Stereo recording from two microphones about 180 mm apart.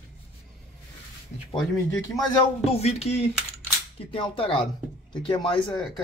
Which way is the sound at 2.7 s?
35° left (ahead or behind).